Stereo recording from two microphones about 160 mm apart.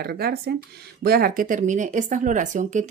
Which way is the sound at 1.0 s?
70° right (ahead or behind).